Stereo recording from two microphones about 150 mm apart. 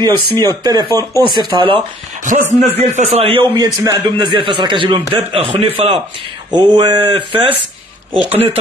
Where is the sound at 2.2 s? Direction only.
55° right (ahead or behind); by 7.5 s 35° right (ahead or behind).